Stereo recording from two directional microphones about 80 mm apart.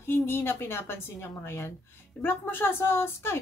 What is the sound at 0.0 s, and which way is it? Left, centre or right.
A woman's voice, left.